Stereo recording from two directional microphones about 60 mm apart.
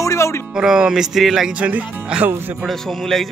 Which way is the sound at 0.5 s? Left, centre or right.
Centre.